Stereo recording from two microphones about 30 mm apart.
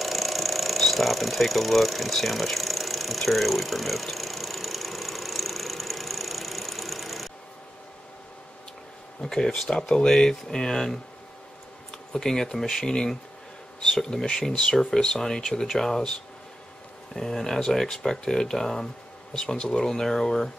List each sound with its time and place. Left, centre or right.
0.0 s a sound: centre
9.2 s speech: centre
12.1 s speech: centre
12.8 s speech: left
17.1 s speech: centre
19.3 s speech: left
19.8 s speech: centre